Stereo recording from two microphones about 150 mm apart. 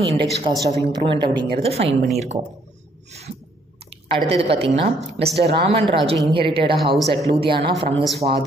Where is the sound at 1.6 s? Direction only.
45° right (ahead or behind).